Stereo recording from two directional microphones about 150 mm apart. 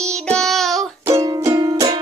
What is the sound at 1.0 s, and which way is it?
Music, 25° right (ahead or behind).